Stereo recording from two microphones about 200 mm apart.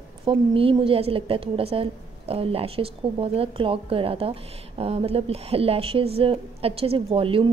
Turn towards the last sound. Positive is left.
turn(degrees=-25)  # may be behind; listen again after turning